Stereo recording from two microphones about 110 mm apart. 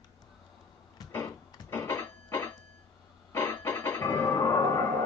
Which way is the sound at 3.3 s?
25° left (ahead or behind).